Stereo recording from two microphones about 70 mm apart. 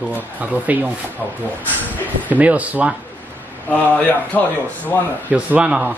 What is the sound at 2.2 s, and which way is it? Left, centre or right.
Speech, right.